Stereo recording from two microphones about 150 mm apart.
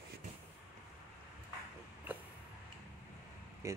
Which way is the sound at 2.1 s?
10° right (ahead or behind).